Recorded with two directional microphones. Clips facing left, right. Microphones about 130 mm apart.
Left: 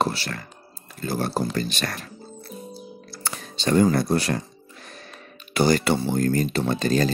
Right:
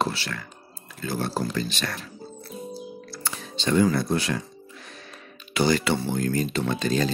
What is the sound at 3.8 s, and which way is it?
Speech, 35° left (ahead or behind).